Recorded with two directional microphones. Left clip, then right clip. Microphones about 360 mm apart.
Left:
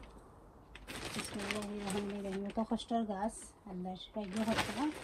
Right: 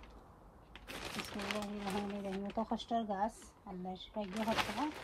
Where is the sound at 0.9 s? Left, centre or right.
Centre.